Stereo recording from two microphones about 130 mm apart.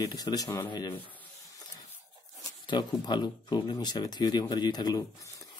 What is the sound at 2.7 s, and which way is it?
Speech, 35° left (ahead or behind).